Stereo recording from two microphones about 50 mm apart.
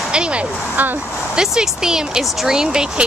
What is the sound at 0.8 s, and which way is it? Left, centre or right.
Speech, right.